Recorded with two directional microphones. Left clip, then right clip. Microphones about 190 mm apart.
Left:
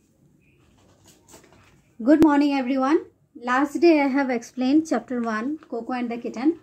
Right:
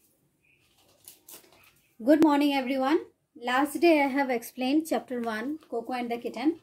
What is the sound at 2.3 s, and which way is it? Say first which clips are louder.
Speech: left 4 dB; 25° right (ahead or behind).